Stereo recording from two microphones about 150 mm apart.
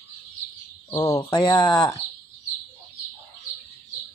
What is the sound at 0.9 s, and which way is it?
Speech, 25° left (ahead or behind).